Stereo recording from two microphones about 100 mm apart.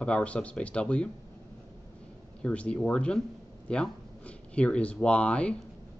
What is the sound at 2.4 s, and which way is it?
Speech, 10° left (ahead or behind).